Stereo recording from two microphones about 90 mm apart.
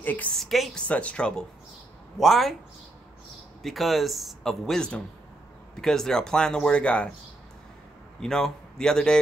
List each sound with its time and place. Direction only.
0.0 s a woman's voice: 20° left (ahead or behind)
0.4 s speech: centre (ahead or behind)
0.7 s speech: 15° left (ahead or behind)
2.1 s speech: centre (ahead or behind)
3.6 s speech: centre (ahead or behind)
8.2 s speech: 5° left (ahead or behind)